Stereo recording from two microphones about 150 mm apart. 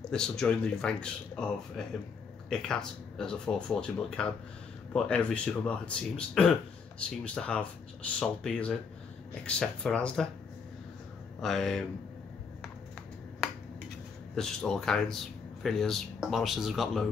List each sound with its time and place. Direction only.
0.1 s speech: 5° left (ahead or behind)
11.4 s speech: centre (ahead or behind)
14.3 s speech: 5° left (ahead or behind)